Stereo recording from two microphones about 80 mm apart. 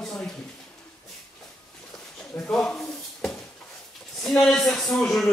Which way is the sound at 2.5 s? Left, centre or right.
Centre.